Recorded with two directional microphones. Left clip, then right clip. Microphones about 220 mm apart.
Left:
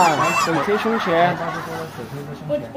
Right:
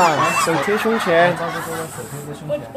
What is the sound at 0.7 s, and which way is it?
Speech, 25° right (ahead or behind).